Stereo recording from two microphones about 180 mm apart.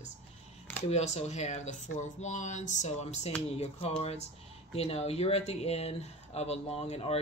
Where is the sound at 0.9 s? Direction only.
35° left (ahead or behind).